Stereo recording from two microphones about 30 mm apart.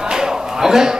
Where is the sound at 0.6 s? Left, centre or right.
Centre.